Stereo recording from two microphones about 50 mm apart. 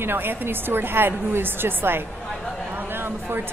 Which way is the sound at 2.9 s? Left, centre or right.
Right.